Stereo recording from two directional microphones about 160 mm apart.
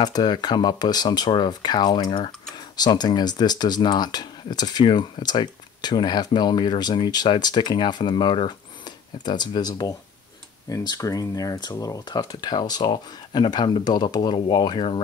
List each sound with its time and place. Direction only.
0.0 s speech: 25° left (ahead or behind)